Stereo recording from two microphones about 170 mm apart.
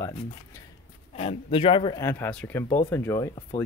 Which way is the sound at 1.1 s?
35° left (ahead or behind).